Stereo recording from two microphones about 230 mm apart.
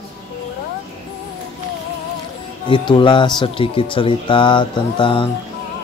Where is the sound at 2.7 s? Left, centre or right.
Left.